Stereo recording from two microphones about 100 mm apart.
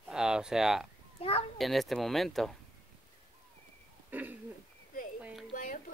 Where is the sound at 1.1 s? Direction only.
70° left (ahead or behind).